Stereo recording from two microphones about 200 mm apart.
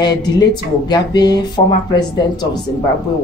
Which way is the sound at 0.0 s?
20° left (ahead or behind).